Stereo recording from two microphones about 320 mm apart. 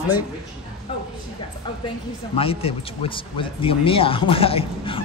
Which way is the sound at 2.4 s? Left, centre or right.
Centre.